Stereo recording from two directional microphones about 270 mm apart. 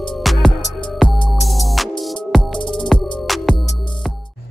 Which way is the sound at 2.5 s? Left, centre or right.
Centre.